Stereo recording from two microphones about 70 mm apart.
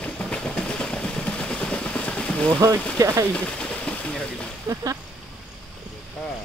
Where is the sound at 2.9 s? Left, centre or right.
Right.